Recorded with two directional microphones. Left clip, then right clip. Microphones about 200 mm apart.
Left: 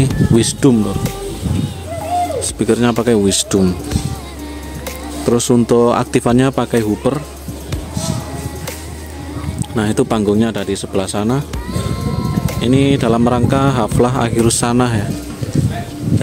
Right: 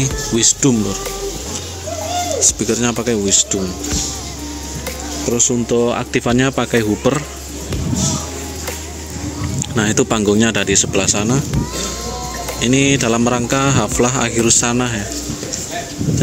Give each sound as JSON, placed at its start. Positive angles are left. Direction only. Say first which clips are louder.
{"t": 0.0, "sound": "speech", "louder": "left 1 dB", "side_deg": 25}
{"t": 2.4, "sound": "speech", "louder": "left 1 dB", "side_deg": 15}
{"t": 3.5, "sound": "speech", "louder": "left 6 dB", "side_deg": 40}
{"t": 5.3, "sound": "speech", "louder": "left 4 dB", "side_deg": 35}
{"t": 9.8, "sound": "speech", "louder": "even", "side_deg": 15}
{"t": 12.5, "sound": "speech", "louder": "even", "side_deg": 15}